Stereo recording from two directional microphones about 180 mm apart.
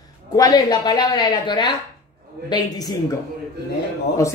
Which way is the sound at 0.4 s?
20° left (ahead or behind).